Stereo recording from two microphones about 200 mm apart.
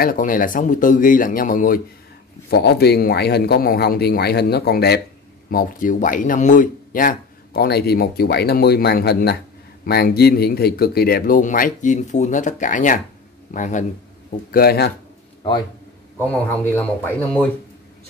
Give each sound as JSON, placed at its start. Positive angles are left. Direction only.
{"t": 0.0, "sound": "a man's voice", "side_deg": 45}
{"t": 14.5, "sound": "speech", "side_deg": 50}
{"t": 16.2, "sound": "speech", "side_deg": 10}